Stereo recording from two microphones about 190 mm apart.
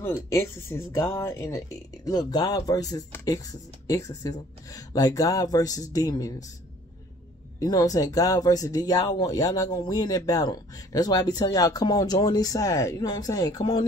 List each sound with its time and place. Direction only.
0.0 s speech: 15° left (ahead or behind)
7.6 s speech: 20° left (ahead or behind)